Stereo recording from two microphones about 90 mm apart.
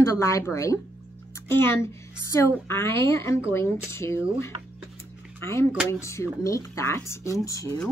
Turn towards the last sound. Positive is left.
turn(degrees=40)  # may be behind; listen again after turning